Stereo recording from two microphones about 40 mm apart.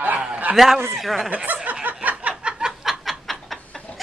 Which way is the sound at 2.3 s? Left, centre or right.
Right.